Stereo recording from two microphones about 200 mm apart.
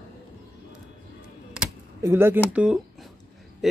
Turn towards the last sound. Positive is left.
turn(degrees=-5)  # may be behind; listen again after turning